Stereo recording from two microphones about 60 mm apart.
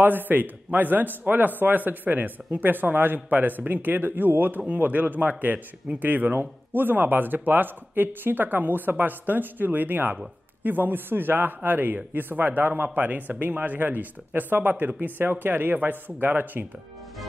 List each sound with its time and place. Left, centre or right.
0.0 s a man's voice: right